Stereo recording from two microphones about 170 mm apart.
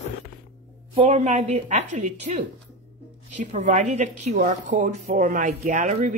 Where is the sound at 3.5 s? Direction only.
45° right (ahead or behind).